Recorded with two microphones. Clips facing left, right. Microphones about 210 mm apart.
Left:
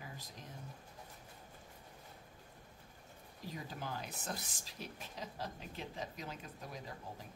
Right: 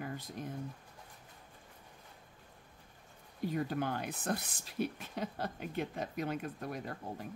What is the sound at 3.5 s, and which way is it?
Speech, 60° right (ahead or behind).